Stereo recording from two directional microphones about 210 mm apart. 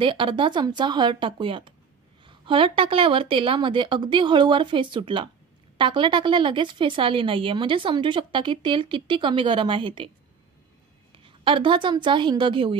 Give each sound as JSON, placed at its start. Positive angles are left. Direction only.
{"t": 0.0, "sound": "speech", "side_deg": -25}
{"t": 11.1, "sound": "a woman's voice", "side_deg": -25}